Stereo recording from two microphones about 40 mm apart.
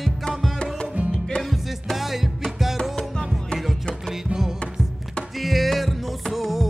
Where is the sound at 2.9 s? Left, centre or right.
Centre.